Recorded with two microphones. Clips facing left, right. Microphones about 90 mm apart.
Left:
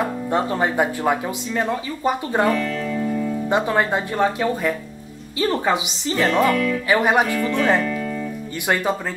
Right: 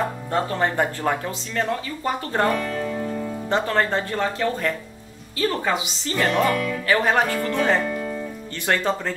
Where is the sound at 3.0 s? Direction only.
20° right (ahead or behind).